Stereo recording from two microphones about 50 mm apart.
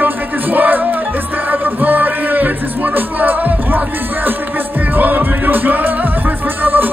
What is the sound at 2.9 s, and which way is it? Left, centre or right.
Music, right.